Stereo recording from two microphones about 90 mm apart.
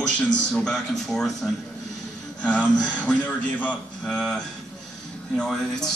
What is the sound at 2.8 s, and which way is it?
A woman's voice, 15° left (ahead or behind).